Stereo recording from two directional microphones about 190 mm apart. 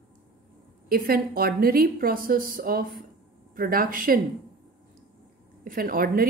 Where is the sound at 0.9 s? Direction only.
50° right (ahead or behind).